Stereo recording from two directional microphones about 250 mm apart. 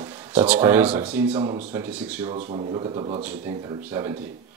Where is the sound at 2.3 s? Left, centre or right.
Right.